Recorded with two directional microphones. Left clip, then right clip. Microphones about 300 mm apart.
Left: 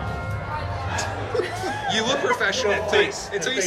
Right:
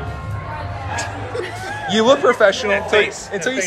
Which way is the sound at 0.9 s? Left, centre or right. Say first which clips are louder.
Right 1 dB; centre.